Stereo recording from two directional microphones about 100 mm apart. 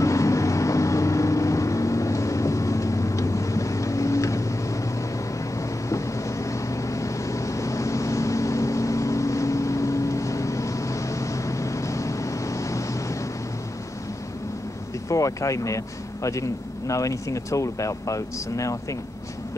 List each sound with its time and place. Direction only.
0.0 s vehicle: 30° left (ahead or behind)
5.9 s vehicle: 30° left (ahead or behind)
15.0 s speech: 35° left (ahead or behind)